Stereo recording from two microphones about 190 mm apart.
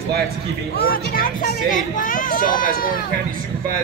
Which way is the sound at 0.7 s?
50° left (ahead or behind).